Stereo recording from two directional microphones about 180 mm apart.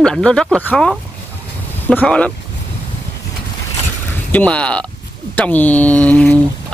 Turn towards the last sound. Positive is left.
turn(degrees=10)  # may be behind; listen again after turning